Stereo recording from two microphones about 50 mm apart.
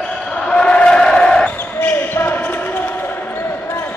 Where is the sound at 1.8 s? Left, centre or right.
Left.